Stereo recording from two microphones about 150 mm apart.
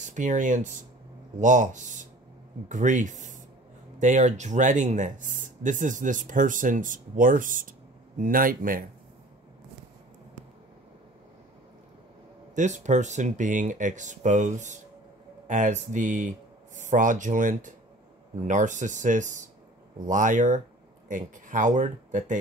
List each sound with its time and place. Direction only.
0.0 s speech: 55° right (ahead or behind)
12.5 s speech: 55° right (ahead or behind)